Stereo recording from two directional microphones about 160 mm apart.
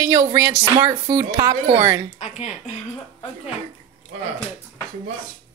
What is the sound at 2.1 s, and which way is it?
Speech, 45° left (ahead or behind).